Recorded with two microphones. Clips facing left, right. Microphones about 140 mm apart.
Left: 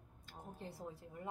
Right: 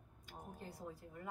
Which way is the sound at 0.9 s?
25° left (ahead or behind).